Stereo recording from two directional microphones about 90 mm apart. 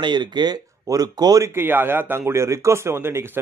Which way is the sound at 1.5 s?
25° right (ahead or behind).